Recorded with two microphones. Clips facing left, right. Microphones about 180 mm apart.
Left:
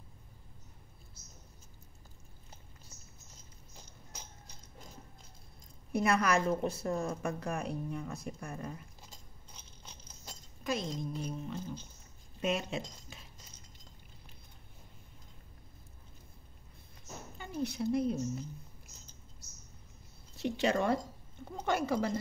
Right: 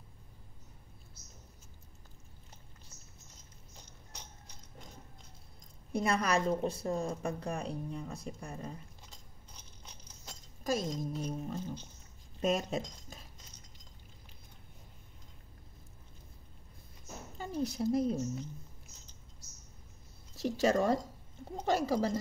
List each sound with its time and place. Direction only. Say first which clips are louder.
3.7 s a sound: left 1 dB; 5° left (ahead or behind)
5.9 s a woman's voice: left 1 dB; 30° right (ahead or behind)
10.6 s a woman's voice: right 2 dB; 40° right (ahead or behind)
17.4 s a woman's voice: right 1 dB; 35° right (ahead or behind)
20.3 s a woman's voice: right 2 dB; 40° right (ahead or behind)